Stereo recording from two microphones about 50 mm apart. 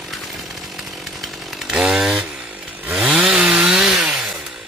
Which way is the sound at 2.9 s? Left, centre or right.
Right.